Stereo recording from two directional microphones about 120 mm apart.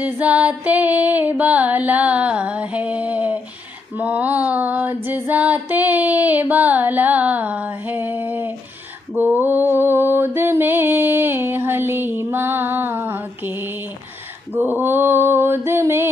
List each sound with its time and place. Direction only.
0.0 s mantra: 10° right (ahead or behind)